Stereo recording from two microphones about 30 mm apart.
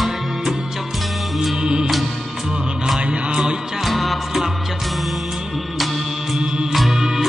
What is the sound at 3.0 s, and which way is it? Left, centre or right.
Music, right.